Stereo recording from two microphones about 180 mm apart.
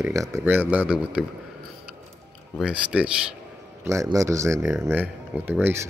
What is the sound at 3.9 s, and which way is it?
Speech, 15° right (ahead or behind).